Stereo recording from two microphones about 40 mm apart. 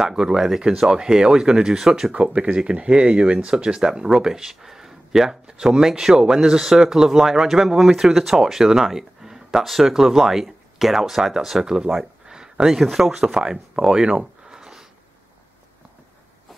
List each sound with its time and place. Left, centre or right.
0.0 s speech: centre
2.3 s speech: right; by 5.4 s centre
5.5 s speech: right
5.8 s speech: centre
11.9 s a sound: centre
12.4 s speech: centre
13.2 s speech: centre